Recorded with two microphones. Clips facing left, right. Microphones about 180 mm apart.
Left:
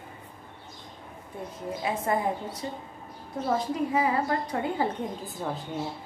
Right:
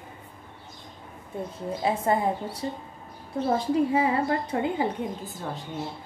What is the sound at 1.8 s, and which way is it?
Speech, 30° right (ahead or behind).